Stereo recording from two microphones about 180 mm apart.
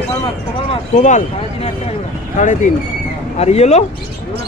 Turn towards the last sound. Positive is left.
turn(degrees=35)  # may be behind; listen again after turning